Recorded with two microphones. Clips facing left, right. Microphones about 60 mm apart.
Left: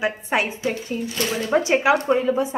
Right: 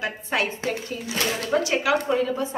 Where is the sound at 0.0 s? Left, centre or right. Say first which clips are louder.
Left 3 dB; left.